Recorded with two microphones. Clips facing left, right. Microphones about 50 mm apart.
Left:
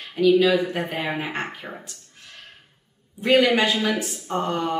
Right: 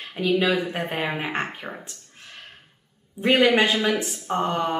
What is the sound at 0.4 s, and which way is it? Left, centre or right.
Speech, right.